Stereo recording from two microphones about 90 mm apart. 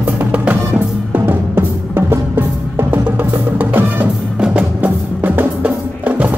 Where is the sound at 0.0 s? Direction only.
15° right (ahead or behind).